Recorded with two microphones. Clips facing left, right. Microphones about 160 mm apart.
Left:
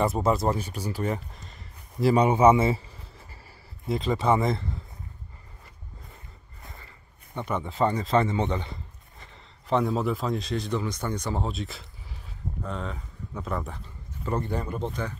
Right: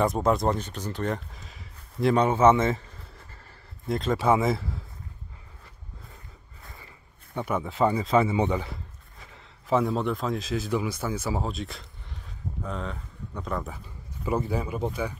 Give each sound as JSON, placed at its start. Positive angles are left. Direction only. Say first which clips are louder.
{"t": 0.0, "sound": "speech", "louder": "right 1 dB", "side_deg": 5}
{"t": 3.8, "sound": "speech", "louder": "right 1 dB", "side_deg": 0}
{"t": 7.3, "sound": "a man's voice", "louder": "right 1 dB", "side_deg": -5}